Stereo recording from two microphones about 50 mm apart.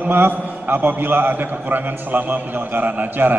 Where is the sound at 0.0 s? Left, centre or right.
Right.